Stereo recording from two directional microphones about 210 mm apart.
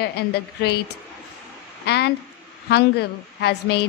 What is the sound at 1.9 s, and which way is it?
A woman's voice, 50° left (ahead or behind).